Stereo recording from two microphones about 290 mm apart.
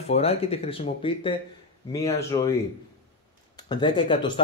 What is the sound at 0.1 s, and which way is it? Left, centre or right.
Speech, left.